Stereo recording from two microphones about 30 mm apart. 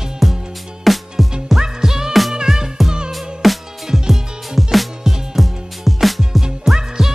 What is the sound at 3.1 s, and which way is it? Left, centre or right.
Music, centre.